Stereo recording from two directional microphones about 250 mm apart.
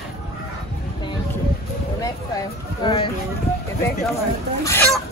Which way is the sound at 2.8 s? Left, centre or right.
Centre.